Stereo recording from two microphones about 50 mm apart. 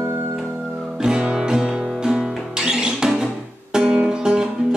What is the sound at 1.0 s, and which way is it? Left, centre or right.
Music, centre.